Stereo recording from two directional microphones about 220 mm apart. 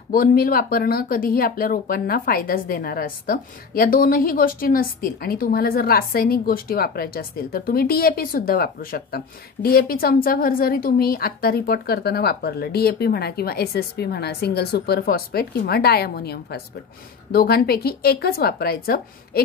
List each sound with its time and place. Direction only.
0.1 s speech: 40° left (ahead or behind)